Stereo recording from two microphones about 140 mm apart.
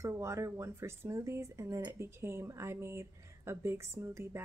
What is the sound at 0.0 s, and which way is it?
Speech, 20° right (ahead or behind).